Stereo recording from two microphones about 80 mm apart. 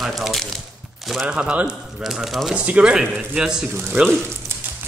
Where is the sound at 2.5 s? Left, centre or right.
Centre.